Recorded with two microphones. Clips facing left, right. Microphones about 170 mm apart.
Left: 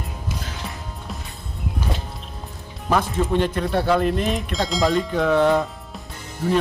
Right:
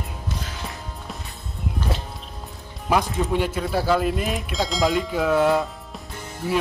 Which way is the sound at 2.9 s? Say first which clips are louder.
Left 1 dB; 10° right (ahead or behind).